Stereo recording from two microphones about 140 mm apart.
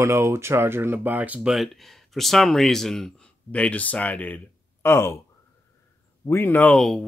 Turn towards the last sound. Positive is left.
turn(degrees=0)  # may be behind; listen again after turning